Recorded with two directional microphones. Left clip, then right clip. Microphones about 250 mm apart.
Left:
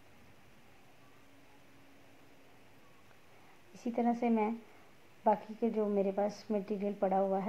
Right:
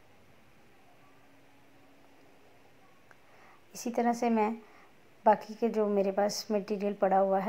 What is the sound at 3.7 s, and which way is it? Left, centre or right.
A woman's voice, centre.